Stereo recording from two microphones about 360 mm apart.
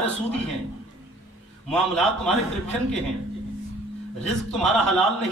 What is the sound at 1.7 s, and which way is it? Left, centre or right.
Speech, centre.